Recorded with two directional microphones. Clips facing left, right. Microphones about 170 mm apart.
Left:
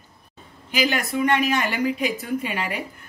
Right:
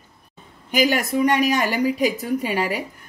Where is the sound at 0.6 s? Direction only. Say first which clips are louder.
Right 4 dB; 45° right (ahead or behind).